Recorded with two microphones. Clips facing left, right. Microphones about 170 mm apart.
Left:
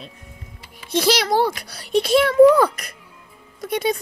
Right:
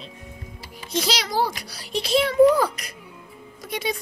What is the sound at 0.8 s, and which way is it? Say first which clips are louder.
A child's voice: left 7 dB; 60° left (ahead or behind).